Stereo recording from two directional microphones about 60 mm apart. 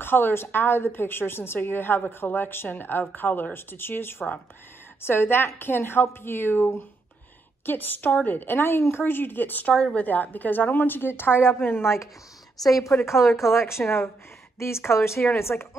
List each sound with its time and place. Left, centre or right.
0.0 s a woman's voice: left
9.8 s a woman's voice: centre
10.0 s a woman's voice: left
12.6 s speech: centre
13.6 s speech: left